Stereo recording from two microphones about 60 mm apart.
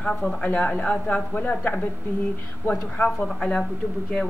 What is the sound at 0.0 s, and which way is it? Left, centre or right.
Speech, centre.